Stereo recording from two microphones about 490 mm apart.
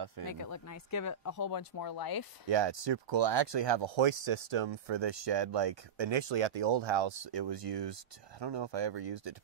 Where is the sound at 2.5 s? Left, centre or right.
Right.